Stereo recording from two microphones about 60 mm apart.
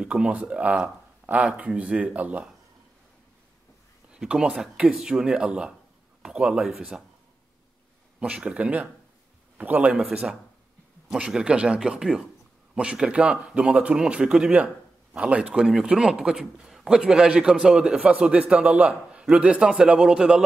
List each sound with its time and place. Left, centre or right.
0.0 s speech: centre
4.3 s a man's voice: centre
8.2 s a man's voice: centre
10.0 s a man's voice: centre